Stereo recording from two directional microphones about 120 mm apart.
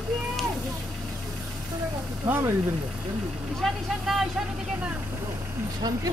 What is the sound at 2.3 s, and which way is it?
Speech, 20° right (ahead or behind).